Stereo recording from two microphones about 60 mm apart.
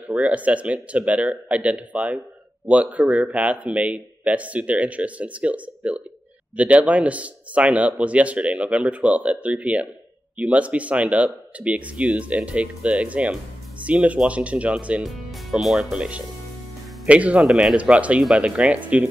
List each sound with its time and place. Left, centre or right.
0.1 s speech: right
15.6 s speech: centre